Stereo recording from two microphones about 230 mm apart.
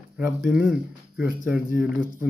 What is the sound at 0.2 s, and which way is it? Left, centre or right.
A man's voice, centre.